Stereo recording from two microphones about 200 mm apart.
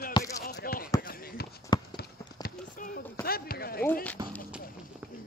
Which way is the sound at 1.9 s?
45° left (ahead or behind).